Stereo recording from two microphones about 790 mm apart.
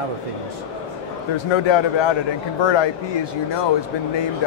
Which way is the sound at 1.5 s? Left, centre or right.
Left.